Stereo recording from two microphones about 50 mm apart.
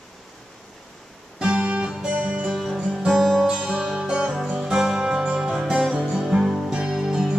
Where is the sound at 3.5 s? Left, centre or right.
Centre.